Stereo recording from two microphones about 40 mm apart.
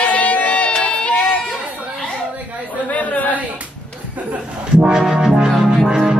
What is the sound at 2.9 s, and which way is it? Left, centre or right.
Chatter, left.